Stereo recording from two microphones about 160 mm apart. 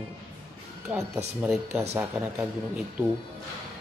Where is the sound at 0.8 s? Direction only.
5° right (ahead or behind).